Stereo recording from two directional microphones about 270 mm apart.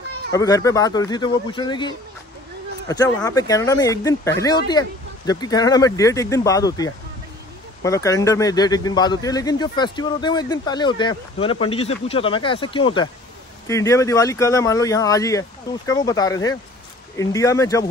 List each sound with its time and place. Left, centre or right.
0.3 s speech: centre
3.2 s speech: centre